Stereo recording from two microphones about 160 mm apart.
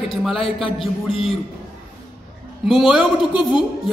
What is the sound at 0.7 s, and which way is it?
Speech, 35° left (ahead or behind).